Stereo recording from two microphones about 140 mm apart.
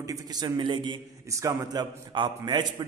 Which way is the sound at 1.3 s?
20° right (ahead or behind).